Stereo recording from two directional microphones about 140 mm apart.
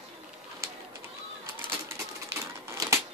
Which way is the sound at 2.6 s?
20° right (ahead or behind).